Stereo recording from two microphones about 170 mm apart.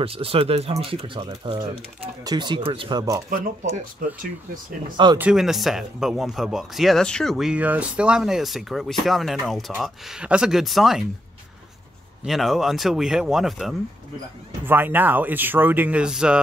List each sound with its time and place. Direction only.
0.0 s speech: 35° right (ahead or behind)
3.3 s speech: 55° right (ahead or behind)
5.1 s speech: 5° right (ahead or behind)
12.3 s speech: centre (ahead or behind)
14.6 s speech: 10° right (ahead or behind)